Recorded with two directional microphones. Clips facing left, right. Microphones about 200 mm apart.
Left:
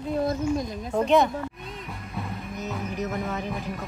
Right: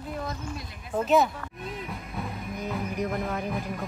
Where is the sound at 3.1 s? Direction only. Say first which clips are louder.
Even; centre (ahead or behind).